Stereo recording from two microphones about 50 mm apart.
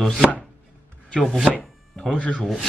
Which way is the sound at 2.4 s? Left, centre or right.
Centre.